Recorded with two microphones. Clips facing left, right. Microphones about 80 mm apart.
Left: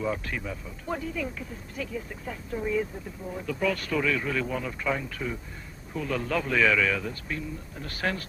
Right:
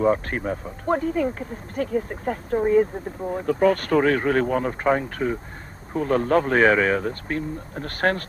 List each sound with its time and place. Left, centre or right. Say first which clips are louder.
0.0 s speech: right 9 dB; right